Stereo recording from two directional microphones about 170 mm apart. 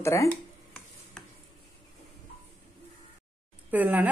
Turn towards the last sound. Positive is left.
turn(degrees=-10)  # may be behind; listen again after turning